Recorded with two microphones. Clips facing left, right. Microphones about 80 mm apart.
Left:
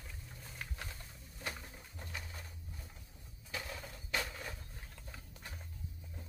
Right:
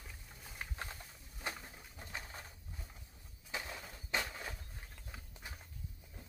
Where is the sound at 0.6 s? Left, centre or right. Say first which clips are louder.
Right 1 dB; right.